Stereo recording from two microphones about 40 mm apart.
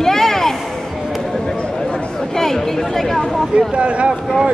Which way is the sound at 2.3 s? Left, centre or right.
Centre.